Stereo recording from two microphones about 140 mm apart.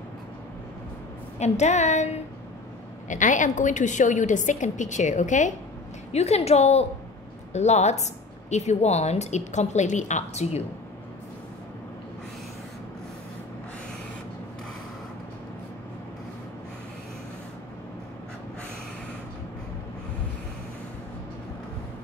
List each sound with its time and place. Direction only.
1.4 s a woman's voice: 55° left (ahead or behind)
3.1 s a woman's voice: 65° left (ahead or behind)
6.1 s speech: 50° left (ahead or behind)